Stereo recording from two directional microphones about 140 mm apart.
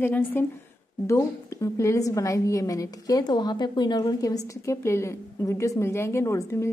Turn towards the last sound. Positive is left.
turn(degrees=20)  # may be behind; listen again after turning